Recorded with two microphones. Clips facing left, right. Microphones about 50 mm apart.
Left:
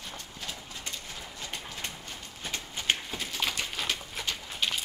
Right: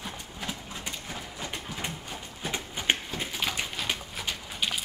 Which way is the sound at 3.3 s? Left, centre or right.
Centre.